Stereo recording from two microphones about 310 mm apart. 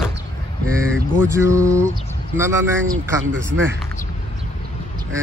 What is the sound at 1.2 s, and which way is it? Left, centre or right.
Speech, centre.